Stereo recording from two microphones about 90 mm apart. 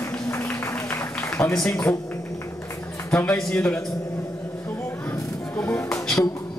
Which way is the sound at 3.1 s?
10° left (ahead or behind).